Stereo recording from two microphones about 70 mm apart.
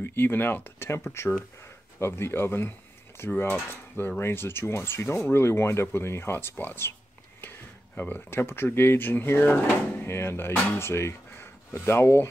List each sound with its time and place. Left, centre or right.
0.0 s speech: left
3.2 s mechanisms: left
4.2 s speech: left